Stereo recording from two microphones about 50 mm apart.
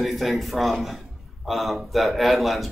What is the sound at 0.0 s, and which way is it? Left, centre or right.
Speech, centre.